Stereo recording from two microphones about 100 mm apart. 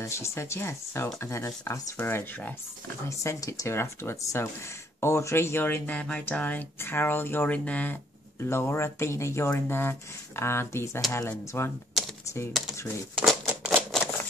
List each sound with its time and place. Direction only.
0.0 s speech: 30° left (ahead or behind)
2.0 s speech: 20° left (ahead or behind)
3.1 s speech: 30° left (ahead or behind); by 8.0 s 15° left (ahead or behind)
8.5 s speech: 25° left (ahead or behind)
13.2 s typewriter: 5° right (ahead or behind)